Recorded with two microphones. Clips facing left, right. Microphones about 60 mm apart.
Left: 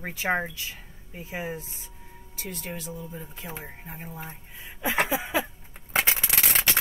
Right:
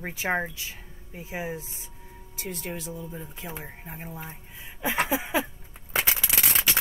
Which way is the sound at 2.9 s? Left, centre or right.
Centre.